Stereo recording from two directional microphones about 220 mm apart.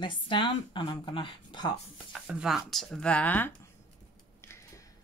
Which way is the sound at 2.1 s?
5° right (ahead or behind).